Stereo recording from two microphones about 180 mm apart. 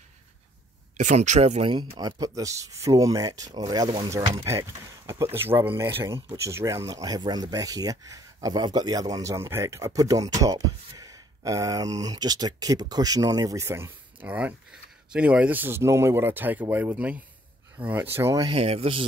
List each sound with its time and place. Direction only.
0.9 s speech: 40° right (ahead or behind)
1.9 s speech: 20° right (ahead or behind)